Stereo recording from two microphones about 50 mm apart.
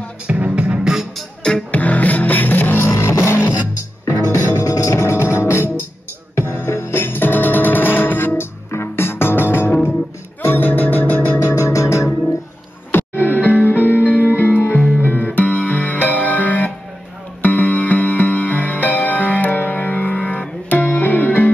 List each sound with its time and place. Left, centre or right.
0.3 s music: right
1.7 s music: left
2.9 s music: left
8.7 s music: left
11.4 s music: left
12.9 s music: left